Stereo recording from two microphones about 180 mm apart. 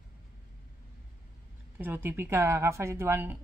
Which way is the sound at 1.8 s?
10° right (ahead or behind).